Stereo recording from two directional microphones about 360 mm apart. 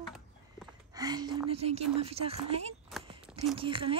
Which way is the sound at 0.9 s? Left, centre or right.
Centre.